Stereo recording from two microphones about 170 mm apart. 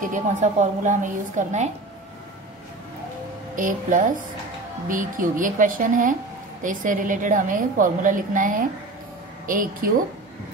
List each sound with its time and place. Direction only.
0.0 s a woman's voice: 45° right (ahead or behind)
3.5 s a woman's voice: 50° right (ahead or behind)